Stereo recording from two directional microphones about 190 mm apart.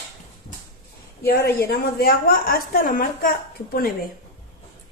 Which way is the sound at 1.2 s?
55° left (ahead or behind).